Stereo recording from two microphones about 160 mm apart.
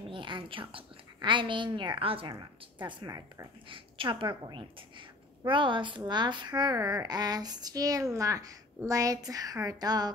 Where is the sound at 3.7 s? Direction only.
30° right (ahead or behind).